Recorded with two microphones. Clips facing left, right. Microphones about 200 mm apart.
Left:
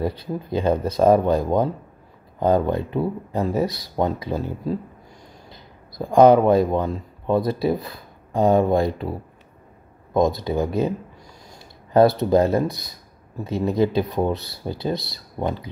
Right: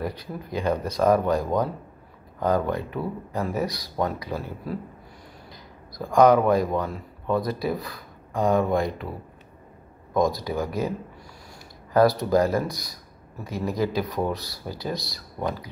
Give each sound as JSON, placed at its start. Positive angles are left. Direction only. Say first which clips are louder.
{"t": 0.0, "sound": "speech", "louder": "left 6 dB", "side_deg": 25}
{"t": 10.1, "sound": "speech", "louder": "left 4 dB", "side_deg": 25}
{"t": 12.2, "sound": "speech", "louder": "left 4 dB", "side_deg": 25}